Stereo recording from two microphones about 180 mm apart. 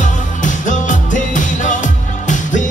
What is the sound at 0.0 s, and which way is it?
Music, 45° left (ahead or behind).